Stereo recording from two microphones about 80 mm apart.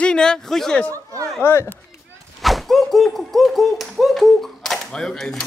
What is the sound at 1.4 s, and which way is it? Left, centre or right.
Speech, left.